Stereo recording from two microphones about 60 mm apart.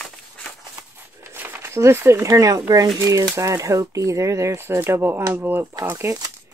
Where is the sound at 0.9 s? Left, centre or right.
Right.